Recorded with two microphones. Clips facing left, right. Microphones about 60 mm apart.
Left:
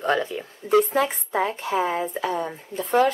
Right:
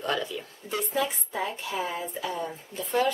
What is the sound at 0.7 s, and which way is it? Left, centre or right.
Speech, left.